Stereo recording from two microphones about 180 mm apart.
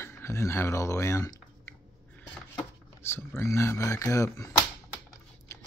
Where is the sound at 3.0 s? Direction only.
15° left (ahead or behind).